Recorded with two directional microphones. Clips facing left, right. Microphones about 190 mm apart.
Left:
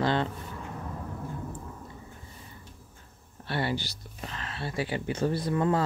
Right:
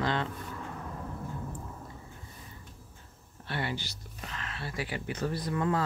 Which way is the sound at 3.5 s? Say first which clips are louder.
Left 5 dB; 35° left (ahead or behind).